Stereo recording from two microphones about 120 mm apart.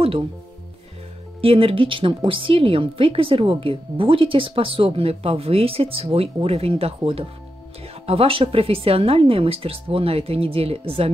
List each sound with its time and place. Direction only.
1.4 s a woman's voice: 50° right (ahead or behind)